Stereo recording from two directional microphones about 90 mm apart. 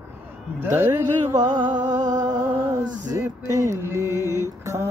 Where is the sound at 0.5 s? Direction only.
25° right (ahead or behind).